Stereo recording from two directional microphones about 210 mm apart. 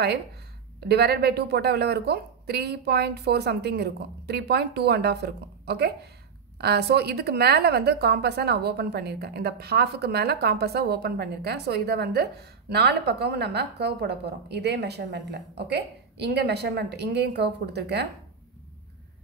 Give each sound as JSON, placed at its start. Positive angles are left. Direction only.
{"t": 0.7, "sound": "a woman's voice", "side_deg": -50}